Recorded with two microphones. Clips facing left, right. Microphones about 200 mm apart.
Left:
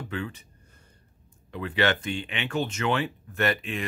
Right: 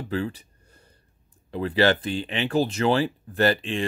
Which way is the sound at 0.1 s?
35° right (ahead or behind).